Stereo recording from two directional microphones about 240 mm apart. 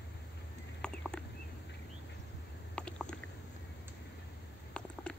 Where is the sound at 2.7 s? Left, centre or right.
Centre.